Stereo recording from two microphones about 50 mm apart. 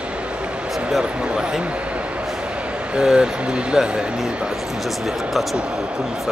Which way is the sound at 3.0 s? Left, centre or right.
Centre.